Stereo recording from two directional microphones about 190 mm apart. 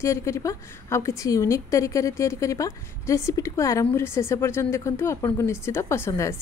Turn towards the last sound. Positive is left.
turn(degrees=15)  # may be behind; listen again after turning